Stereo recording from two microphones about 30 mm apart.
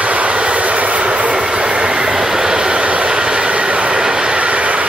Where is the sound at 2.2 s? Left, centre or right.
Right.